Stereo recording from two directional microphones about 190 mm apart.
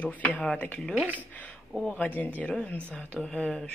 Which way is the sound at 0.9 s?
5° right (ahead or behind).